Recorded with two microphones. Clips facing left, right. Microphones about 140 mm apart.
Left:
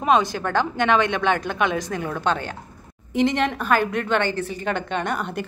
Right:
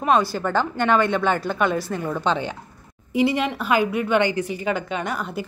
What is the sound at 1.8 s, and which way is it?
A woman's voice, 10° right (ahead or behind).